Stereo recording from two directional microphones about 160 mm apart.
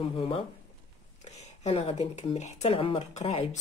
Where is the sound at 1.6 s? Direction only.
40° left (ahead or behind).